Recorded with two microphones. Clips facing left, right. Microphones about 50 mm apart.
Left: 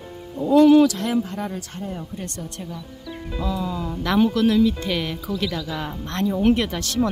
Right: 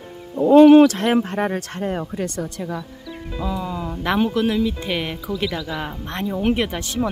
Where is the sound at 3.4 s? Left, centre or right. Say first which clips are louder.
Even; centre.